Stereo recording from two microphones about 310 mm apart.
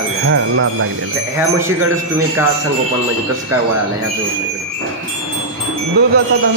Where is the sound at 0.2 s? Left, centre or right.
Right.